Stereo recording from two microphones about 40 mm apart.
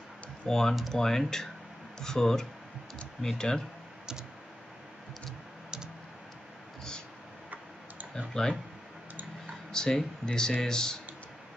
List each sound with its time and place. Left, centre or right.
0.5 s speech: centre
8.3 s speech: centre
9.7 s speech: centre